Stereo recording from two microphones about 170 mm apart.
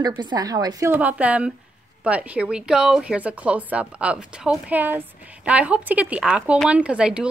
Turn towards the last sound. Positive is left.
turn(degrees=-5)  # may be behind; listen again after turning